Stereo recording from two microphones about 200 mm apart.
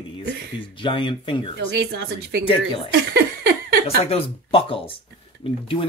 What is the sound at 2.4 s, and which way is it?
Speech, 25° left (ahead or behind).